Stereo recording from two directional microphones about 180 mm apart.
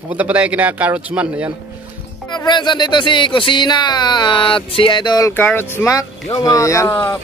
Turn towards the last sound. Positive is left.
turn(degrees=15)  # may be behind; listen again after turning